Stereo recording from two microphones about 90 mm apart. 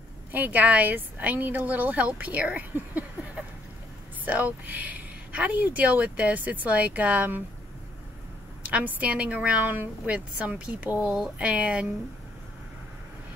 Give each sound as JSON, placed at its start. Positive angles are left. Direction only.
{"t": 0.3, "sound": "speech", "side_deg": -20}
{"t": 8.6, "sound": "speech", "side_deg": -15}